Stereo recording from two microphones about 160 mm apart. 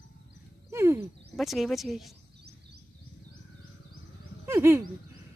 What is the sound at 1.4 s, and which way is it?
Speech, centre (ahead or behind).